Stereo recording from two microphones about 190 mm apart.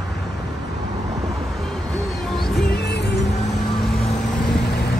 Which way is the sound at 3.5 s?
Centre (ahead or behind).